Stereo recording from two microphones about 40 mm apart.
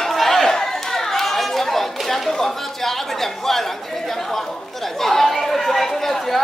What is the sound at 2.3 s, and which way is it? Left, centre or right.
A man's voice, centre.